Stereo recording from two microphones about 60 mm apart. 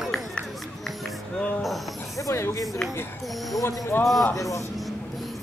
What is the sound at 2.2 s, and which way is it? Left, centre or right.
Speech, left.